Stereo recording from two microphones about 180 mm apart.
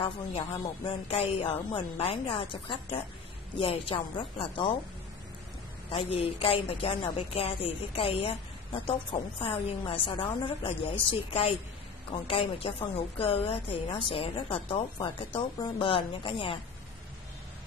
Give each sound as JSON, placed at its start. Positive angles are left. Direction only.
{"t": 0.8, "sound": "a woman's voice", "side_deg": 30}
{"t": 5.9, "sound": "a woman's voice", "side_deg": 30}